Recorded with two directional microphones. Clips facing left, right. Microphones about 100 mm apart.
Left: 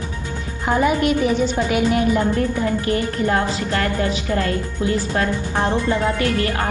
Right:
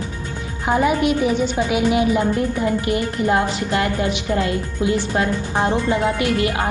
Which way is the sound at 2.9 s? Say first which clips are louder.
Right 1 dB; 15° right (ahead or behind).